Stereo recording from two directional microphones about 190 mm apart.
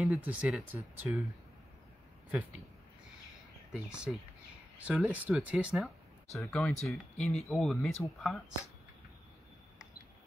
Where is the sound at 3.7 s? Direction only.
5° right (ahead or behind).